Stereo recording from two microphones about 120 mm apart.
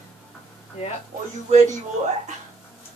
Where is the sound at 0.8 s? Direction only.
55° left (ahead or behind).